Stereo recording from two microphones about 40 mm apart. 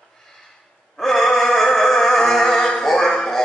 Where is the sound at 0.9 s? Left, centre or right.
Centre.